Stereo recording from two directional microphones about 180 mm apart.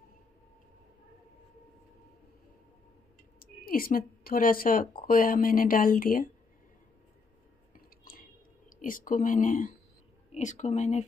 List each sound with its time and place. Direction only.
3.3 s a woman's voice: 55° left (ahead or behind)
7.7 s a sound: 50° left (ahead or behind)
10.3 s speech: 40° left (ahead or behind)